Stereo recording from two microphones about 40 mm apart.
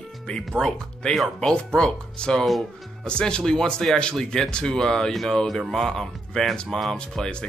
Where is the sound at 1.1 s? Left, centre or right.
Centre.